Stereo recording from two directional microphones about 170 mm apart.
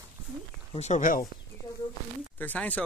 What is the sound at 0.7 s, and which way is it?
Speech, 40° left (ahead or behind).